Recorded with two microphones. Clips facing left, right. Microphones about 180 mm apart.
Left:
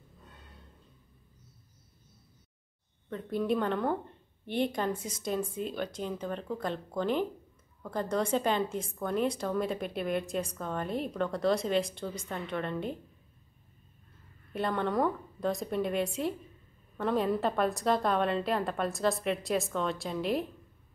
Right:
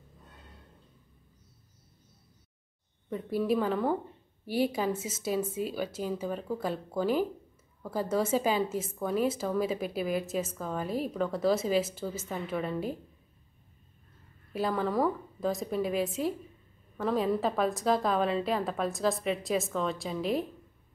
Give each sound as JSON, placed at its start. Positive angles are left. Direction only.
{"t": 3.1, "sound": "a woman's voice", "side_deg": -10}
{"t": 14.5, "sound": "a woman's voice", "side_deg": -5}